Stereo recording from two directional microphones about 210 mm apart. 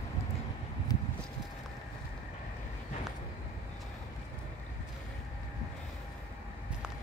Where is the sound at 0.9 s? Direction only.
20° left (ahead or behind).